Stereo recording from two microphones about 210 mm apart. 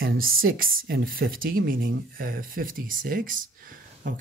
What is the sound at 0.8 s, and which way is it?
Speech, 45° right (ahead or behind).